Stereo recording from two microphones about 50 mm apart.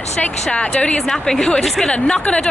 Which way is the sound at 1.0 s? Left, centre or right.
Centre.